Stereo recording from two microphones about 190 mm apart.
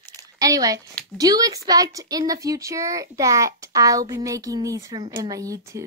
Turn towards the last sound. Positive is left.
turn(degrees=-15)  # may be behind; listen again after turning